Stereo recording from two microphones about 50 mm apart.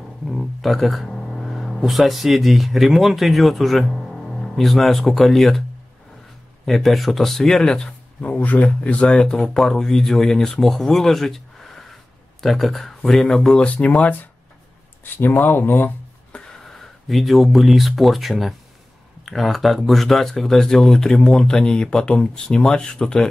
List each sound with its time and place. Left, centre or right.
0.3 s a sound: centre
1.8 s speech: centre
6.6 s speech: centre
8.4 s a man's voice: left
9.1 s speech: centre
13.6 s speech: left
15.2 s speech: left
16.3 s gasp: centre
16.7 s speech: centre